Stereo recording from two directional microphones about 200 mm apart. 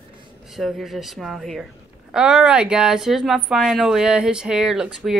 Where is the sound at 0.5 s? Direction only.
Centre (ahead or behind).